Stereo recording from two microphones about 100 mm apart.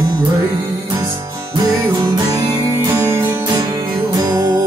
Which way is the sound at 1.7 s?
35° right (ahead or behind).